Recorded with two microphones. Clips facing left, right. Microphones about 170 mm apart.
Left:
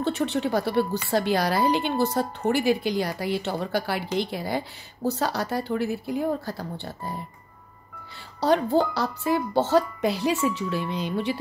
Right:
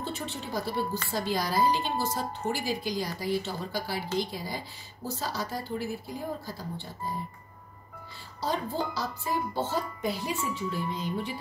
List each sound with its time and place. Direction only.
0.0 s speech: 70° left (ahead or behind)
8.4 s speech: 70° left (ahead or behind)